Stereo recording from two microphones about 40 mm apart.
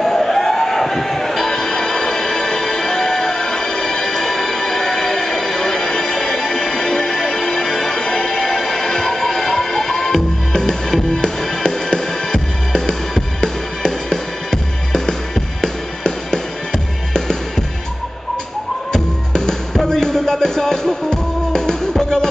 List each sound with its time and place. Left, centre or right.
0.0 s music: centre
18.9 s music: centre